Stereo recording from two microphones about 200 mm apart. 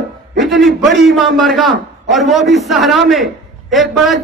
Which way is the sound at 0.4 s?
Centre (ahead or behind).